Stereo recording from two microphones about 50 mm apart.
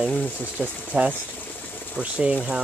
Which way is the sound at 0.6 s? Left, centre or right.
Right.